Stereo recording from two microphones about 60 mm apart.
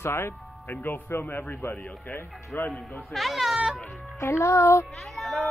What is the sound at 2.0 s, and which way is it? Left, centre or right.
Music, left.